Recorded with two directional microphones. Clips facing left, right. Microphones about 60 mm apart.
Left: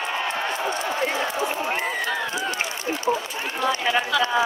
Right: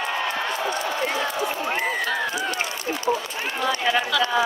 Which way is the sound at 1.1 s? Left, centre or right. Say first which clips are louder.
Even; left.